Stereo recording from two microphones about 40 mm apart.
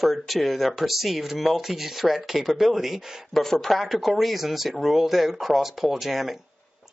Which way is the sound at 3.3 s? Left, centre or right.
Centre.